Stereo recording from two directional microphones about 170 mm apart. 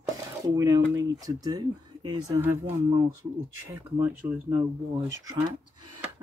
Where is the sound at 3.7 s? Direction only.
10° right (ahead or behind).